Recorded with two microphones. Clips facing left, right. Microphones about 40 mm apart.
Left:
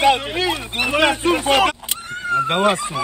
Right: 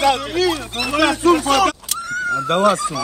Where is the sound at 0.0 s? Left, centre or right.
Left.